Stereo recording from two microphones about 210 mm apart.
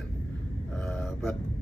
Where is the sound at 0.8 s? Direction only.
5° left (ahead or behind).